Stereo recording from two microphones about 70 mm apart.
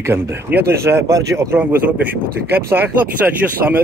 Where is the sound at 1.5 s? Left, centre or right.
Right.